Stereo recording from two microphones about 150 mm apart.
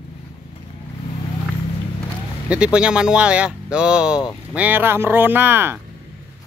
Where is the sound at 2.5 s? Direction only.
5° right (ahead or behind).